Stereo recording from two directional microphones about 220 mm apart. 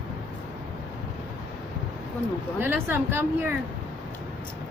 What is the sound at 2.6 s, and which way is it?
Speech, 10° right (ahead or behind).